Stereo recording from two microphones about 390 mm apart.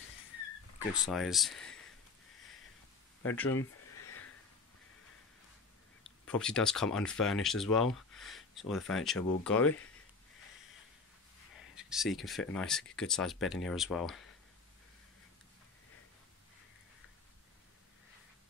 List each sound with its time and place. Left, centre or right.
0.7 s speech: centre
3.9 s a sound: left
6.2 s speech: centre
11.7 s speech: centre